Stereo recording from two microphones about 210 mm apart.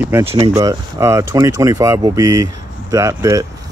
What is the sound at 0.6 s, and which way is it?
Speech, 15° right (ahead or behind).